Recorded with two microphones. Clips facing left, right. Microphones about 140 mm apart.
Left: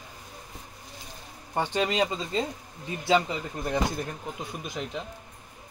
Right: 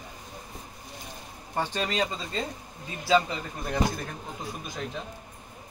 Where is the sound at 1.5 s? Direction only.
15° left (ahead or behind).